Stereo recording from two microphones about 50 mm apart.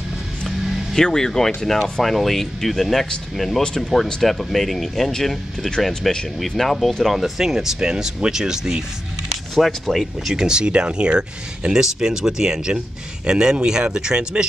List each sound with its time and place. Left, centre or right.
0.5 s music: centre
1.0 s speech: centre
7.2 s speech: centre
9.6 s speech: centre
10.2 s speech: centre